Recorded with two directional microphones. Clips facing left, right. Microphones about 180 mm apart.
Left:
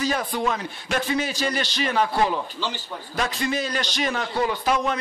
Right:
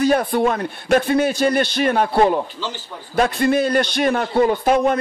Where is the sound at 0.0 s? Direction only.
55° right (ahead or behind).